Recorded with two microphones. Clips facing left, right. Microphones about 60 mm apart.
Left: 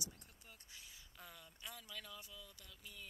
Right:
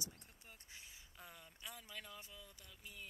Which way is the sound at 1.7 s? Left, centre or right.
Right.